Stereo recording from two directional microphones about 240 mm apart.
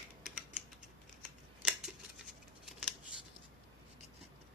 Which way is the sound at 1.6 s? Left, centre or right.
Centre.